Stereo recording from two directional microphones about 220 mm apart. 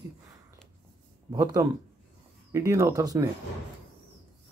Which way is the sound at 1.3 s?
15° right (ahead or behind).